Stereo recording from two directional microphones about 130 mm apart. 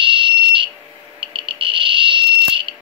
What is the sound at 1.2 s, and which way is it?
Smoke detector, 40° right (ahead or behind).